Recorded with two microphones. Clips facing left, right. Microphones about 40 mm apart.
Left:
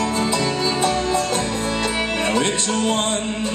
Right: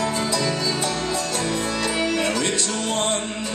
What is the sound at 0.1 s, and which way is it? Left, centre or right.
Music, left.